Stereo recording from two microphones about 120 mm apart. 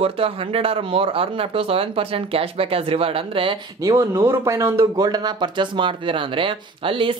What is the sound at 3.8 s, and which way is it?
A woman's voice, 25° right (ahead or behind).